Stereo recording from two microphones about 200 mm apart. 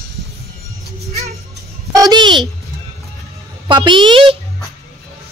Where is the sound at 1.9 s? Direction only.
20° right (ahead or behind).